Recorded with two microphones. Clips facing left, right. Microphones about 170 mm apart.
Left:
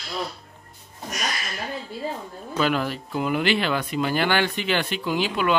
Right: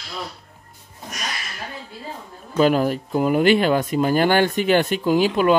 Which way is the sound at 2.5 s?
40° right (ahead or behind).